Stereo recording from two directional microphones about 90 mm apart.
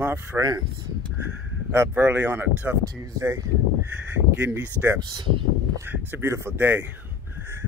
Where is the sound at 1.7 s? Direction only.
30° right (ahead or behind).